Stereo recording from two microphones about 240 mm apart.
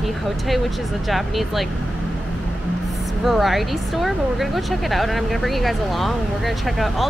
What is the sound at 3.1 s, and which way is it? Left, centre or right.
Speech, centre.